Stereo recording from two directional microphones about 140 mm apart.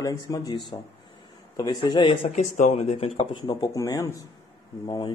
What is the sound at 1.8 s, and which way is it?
Speech, 35° left (ahead or behind).